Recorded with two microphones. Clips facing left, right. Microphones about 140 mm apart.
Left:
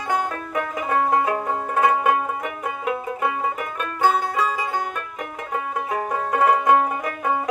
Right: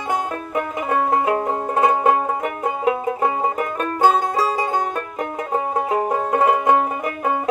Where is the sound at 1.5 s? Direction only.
30° right (ahead or behind).